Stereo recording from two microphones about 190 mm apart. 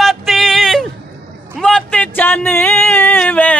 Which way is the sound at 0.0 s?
Centre (ahead or behind).